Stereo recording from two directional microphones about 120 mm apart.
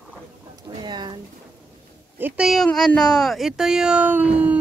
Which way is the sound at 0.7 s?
35° right (ahead or behind).